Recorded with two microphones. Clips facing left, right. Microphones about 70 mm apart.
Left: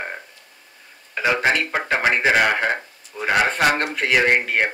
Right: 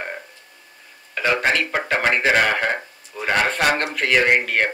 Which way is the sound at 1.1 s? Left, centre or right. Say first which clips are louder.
Even; centre.